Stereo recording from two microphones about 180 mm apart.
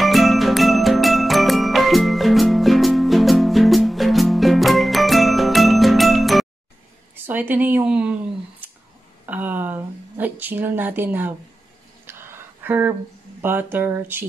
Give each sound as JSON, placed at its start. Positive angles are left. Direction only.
{"t": 0.0, "sound": "music", "side_deg": 0}
{"t": 7.2, "sound": "speech", "side_deg": -10}
{"t": 12.1, "sound": "a sound", "side_deg": -15}
{"t": 13.4, "sound": "speech", "side_deg": -10}